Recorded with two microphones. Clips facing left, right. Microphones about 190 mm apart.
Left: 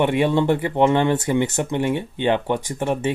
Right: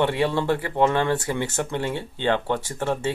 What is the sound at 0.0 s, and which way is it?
Speech, 20° left (ahead or behind).